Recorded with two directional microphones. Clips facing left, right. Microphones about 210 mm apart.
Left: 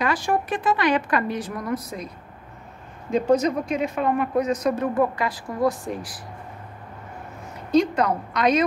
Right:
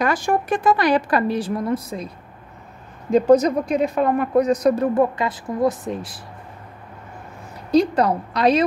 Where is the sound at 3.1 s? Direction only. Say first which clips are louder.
Right 5 dB; 35° right (ahead or behind).